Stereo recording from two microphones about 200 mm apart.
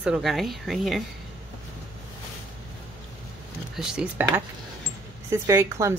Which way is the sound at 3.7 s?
5° right (ahead or behind).